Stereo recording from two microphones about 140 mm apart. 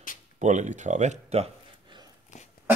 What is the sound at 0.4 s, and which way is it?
Speech, 60° right (ahead or behind).